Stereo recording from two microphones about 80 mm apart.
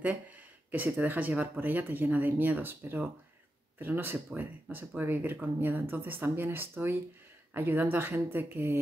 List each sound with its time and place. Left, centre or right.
0.7 s speech: right